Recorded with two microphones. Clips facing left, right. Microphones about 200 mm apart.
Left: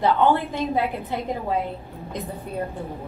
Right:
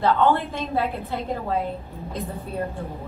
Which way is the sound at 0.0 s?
15° left (ahead or behind).